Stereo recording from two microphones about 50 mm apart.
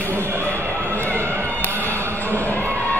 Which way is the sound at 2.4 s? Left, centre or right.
Left.